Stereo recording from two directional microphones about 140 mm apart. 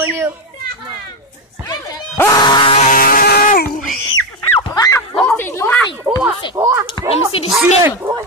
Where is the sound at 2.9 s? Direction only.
90° left.